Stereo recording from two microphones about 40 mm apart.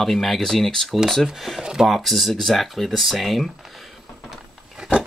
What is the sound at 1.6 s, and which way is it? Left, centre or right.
Speech, centre.